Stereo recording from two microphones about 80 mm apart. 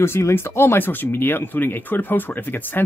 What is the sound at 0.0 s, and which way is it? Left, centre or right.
Speech, left.